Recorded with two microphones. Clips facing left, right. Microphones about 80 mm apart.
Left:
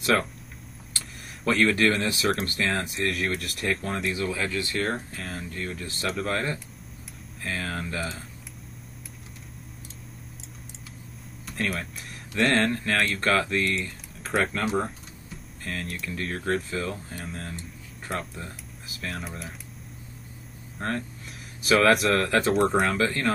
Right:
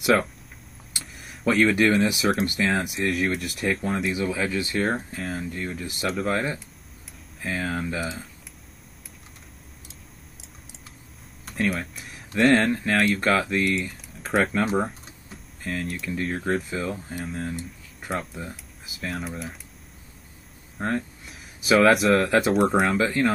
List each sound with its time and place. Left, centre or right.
0.0 s speech: centre
0.9 s vehicle: centre
2.8 s speech: centre
4.1 s speech: centre
4.8 s speech: centre
11.4 s speech: centre
12.5 s speech: centre
15.6 s speech: centre
20.7 s speech: centre